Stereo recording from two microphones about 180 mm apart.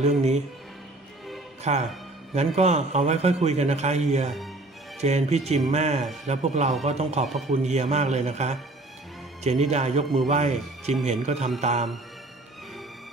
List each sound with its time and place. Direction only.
0.0 s a man's voice: 40° right (ahead or behind)
1.6 s a man's voice: 40° right (ahead or behind)
7.2 s a man's voice: centre (ahead or behind)
7.6 s a man's voice: 40° right (ahead or behind)